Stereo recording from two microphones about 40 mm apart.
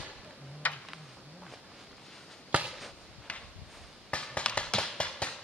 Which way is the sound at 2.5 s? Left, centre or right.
Right.